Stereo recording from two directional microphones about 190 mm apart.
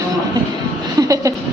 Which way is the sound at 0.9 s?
15° right (ahead or behind).